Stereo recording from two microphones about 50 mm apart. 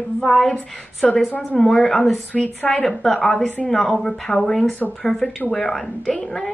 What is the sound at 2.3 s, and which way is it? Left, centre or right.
Speech, left.